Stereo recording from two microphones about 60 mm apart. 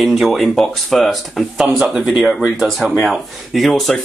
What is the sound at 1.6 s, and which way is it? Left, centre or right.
Speech, right.